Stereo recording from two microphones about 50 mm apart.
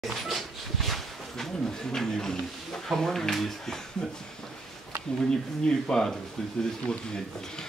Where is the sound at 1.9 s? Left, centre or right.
Centre.